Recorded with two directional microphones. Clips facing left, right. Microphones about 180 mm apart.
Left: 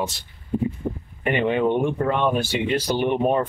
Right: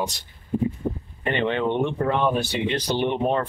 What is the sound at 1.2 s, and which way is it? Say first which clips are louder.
Speech: left 3 dB; 10° left (ahead or behind).